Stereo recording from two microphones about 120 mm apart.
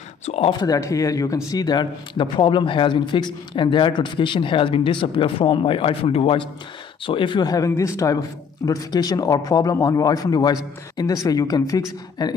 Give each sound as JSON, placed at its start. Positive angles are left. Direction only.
{"t": 0.2, "sound": "speech", "side_deg": 60}
{"t": 0.5, "sound": "speech", "side_deg": 30}